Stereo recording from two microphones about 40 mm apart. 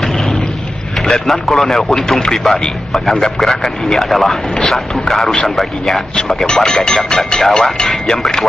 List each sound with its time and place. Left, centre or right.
1.2 s speech: centre
3.3 s speech: centre
6.1 s speech: centre